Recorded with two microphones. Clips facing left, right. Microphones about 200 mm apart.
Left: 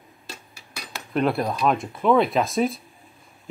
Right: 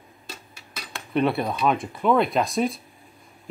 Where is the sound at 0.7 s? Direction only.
Centre (ahead or behind).